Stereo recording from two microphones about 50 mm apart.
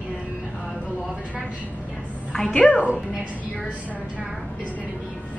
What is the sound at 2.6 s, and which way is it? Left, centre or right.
Speech, left.